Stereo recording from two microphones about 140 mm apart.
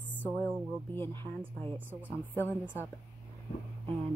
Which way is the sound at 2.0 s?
15° left (ahead or behind).